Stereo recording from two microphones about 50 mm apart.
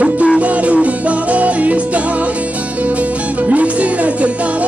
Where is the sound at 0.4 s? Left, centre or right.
Right.